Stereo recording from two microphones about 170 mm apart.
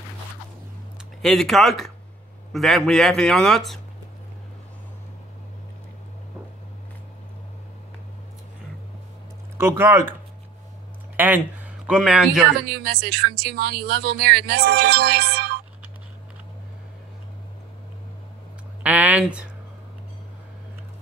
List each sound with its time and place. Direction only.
1.2 s speech: centre (ahead or behind)
9.6 s speech: 15° right (ahead or behind)
11.1 s speech: 10° right (ahead or behind)
12.6 s speech: 70° right (ahead or behind)
18.8 s a sound: 10° right (ahead or behind)